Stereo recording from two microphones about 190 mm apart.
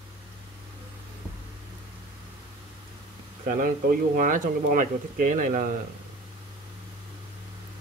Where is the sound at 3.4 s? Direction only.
45° right (ahead or behind).